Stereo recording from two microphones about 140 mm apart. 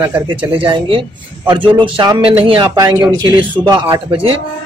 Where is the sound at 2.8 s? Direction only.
25° right (ahead or behind).